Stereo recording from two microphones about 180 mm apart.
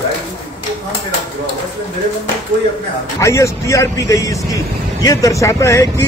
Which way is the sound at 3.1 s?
15° left (ahead or behind).